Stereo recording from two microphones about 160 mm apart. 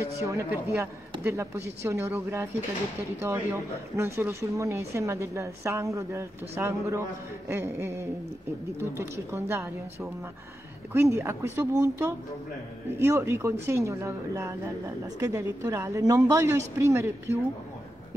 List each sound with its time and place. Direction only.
0.2 s speech: 15° right (ahead or behind)